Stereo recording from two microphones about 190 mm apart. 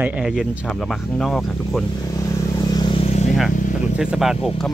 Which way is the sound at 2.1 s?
15° left (ahead or behind).